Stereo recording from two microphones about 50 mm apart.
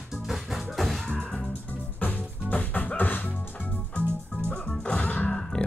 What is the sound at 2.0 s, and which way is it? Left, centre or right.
Music, left.